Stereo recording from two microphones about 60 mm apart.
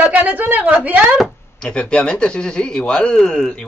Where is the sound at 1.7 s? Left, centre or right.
Centre.